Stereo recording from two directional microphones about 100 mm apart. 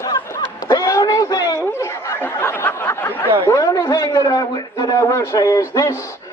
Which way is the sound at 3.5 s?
30° left (ahead or behind).